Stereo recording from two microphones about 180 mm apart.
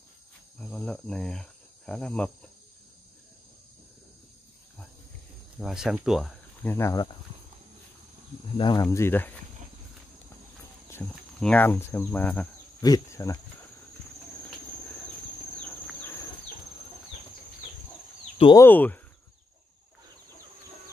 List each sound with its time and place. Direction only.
0.6 s speech: 5° left (ahead or behind)
5.6 s speech: centre (ahead or behind)
6.6 s cricket: 15° left (ahead or behind)
8.5 s speech: 25° left (ahead or behind)
8.8 s cricket: 10° left (ahead or behind)
11.3 s cricket: 5° left (ahead or behind)
18.6 s cricket: 10° left (ahead or behind)